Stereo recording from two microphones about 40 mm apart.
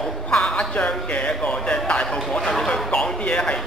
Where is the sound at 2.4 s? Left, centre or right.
Centre.